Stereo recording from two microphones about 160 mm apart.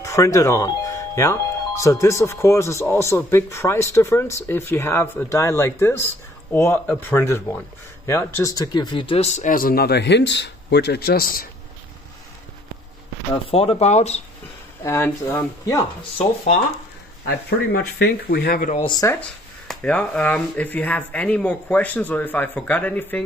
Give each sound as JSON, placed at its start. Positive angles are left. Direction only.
{"t": 0.0, "sound": "speech", "side_deg": 20}
{"t": 13.3, "sound": "speech", "side_deg": 35}
{"t": 14.8, "sound": "speech", "side_deg": 20}
{"t": 17.5, "sound": "speech", "side_deg": 80}
{"t": 18.9, "sound": "speech", "side_deg": 25}
{"t": 19.7, "sound": "speech", "side_deg": 5}